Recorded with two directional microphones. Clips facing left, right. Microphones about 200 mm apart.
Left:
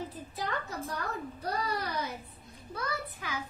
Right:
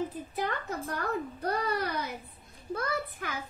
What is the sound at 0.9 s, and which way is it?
A child's voice, 55° right (ahead or behind).